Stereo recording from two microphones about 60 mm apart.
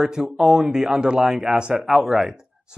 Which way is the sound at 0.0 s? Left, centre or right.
Centre.